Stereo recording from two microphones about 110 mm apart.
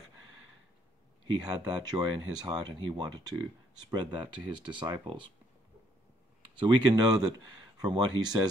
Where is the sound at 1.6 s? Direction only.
40° right (ahead or behind).